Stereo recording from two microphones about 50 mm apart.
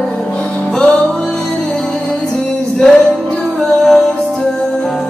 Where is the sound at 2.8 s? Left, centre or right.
Centre.